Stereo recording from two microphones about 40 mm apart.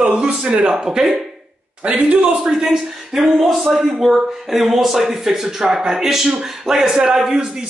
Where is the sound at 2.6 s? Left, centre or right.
Centre.